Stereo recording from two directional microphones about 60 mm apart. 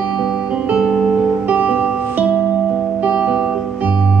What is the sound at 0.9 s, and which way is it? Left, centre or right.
Music, centre.